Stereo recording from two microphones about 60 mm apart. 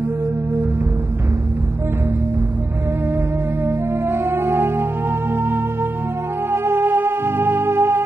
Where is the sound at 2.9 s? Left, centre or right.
Right.